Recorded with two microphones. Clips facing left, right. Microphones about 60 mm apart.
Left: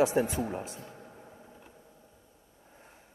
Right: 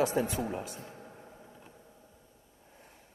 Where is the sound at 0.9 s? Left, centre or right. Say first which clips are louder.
Even; centre.